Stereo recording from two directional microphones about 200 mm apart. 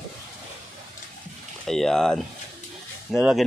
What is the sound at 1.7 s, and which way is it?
Speech, centre (ahead or behind).